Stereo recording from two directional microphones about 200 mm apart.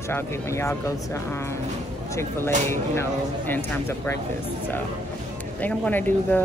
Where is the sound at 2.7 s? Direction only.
10° left (ahead or behind).